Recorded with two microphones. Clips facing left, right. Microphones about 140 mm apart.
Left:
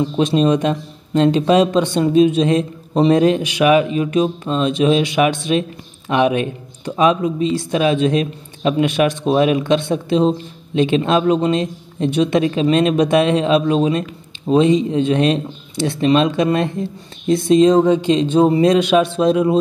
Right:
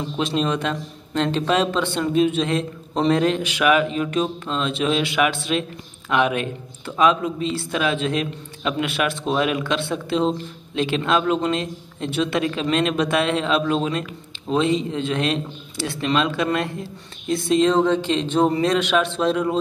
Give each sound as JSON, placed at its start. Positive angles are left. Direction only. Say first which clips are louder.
{"t": 0.2, "sound": "a man's voice", "louder": "left 7 dB", "side_deg": 15}